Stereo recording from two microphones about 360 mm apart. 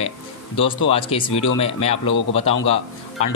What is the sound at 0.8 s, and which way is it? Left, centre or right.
Speech, centre.